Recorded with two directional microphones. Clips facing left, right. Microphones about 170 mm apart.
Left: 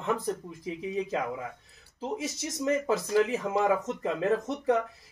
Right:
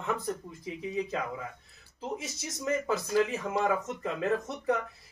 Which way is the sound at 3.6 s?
25° left (ahead or behind).